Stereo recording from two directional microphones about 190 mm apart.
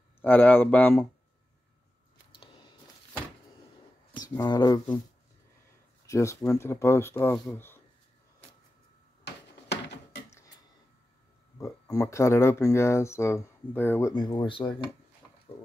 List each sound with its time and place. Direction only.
0.2 s speech: 10° left (ahead or behind)
4.3 s speech: 15° left (ahead or behind)
6.0 s speech: 15° left (ahead or behind)
7.5 s a sound: 10° left (ahead or behind)
9.2 s a sound: 60° left (ahead or behind)
11.6 s speech: 15° left (ahead or behind)
14.1 s speech: 25° left (ahead or behind)